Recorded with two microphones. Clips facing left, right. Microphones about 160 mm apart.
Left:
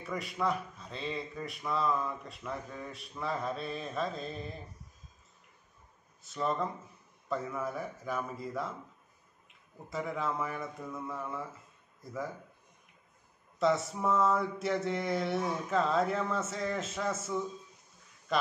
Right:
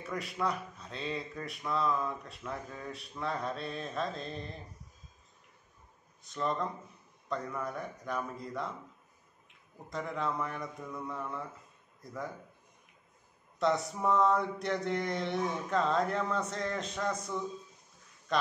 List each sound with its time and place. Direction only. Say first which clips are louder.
0.0 s a man's voice: left 1 dB; centre (ahead or behind)
6.2 s a man's voice: left 1 dB; 5° left (ahead or behind)
9.8 s a man's voice: left 1 dB; 5° left (ahead or behind)
13.6 s a man's voice: left 1 dB; centre (ahead or behind)